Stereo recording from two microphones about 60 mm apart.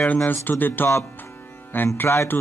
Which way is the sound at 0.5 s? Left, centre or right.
Left.